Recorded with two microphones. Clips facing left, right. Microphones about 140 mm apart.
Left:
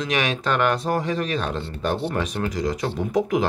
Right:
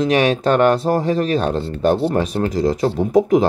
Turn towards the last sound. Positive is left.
turn(degrees=-30)  # may be behind; listen again after turning